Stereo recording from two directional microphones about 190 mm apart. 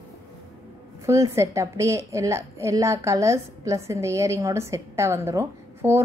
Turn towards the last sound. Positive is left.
turn(degrees=-15)  # may be behind; listen again after turning